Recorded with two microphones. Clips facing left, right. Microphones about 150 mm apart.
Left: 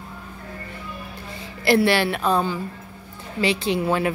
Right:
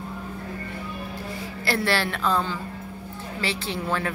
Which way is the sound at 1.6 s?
15° left (ahead or behind).